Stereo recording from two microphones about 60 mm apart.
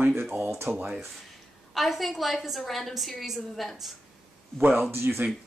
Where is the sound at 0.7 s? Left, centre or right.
Right.